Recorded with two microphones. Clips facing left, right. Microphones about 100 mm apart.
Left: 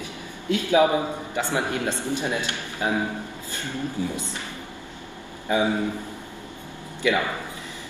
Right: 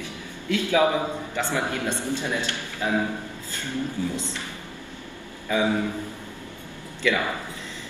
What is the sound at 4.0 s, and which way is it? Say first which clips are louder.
Speech: left 1 dB; 15° left (ahead or behind).